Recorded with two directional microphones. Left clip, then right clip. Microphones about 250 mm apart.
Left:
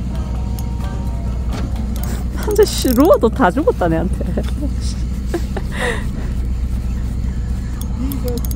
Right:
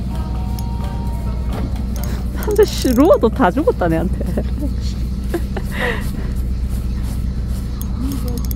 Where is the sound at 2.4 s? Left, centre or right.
Centre.